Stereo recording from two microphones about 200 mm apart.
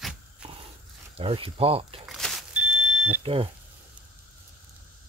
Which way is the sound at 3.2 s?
25° right (ahead or behind).